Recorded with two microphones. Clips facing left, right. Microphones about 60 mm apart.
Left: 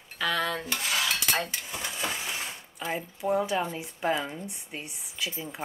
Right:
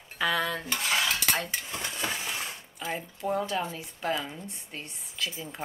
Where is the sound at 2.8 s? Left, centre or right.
Centre.